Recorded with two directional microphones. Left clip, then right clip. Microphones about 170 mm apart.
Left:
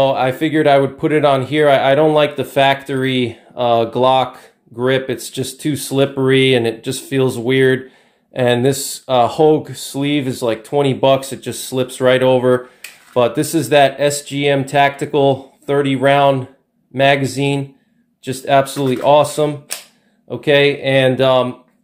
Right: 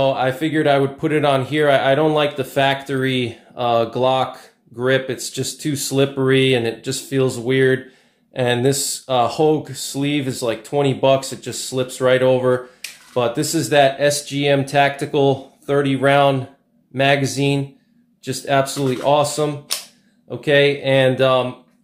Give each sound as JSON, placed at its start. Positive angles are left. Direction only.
{"t": 0.0, "sound": "speech", "side_deg": 35}